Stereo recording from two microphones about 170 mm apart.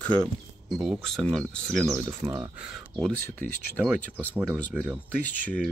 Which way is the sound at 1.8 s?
15° right (ahead or behind).